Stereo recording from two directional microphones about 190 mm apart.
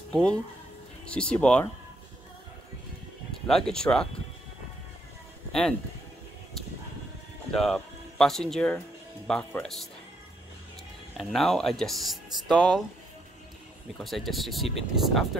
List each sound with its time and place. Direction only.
0.1 s speech: 5° left (ahead or behind)
3.4 s speech: 5° left (ahead or behind)
5.5 s speech: 5° left (ahead or behind)
7.5 s speech: centre (ahead or behind)
11.1 s speech: centre (ahead or behind)
13.9 s speech: centre (ahead or behind)